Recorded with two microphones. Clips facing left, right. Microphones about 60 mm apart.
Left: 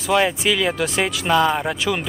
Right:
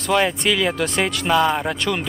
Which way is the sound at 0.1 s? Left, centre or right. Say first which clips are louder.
Even; centre.